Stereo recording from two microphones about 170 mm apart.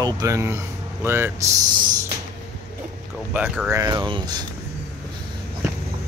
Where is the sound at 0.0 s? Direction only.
20° right (ahead or behind).